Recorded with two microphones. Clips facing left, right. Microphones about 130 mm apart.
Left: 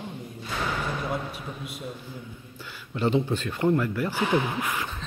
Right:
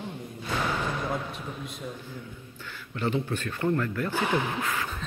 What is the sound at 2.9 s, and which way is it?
Speech, 20° left (ahead or behind).